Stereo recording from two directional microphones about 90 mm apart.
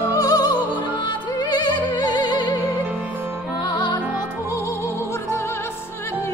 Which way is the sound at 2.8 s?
20° right (ahead or behind).